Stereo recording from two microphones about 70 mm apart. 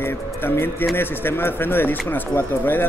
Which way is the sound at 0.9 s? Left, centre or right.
Left.